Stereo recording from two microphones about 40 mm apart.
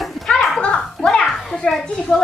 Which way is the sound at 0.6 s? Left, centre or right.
Left.